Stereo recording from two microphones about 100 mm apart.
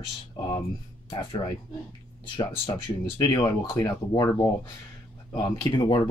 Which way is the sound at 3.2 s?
35° left (ahead or behind).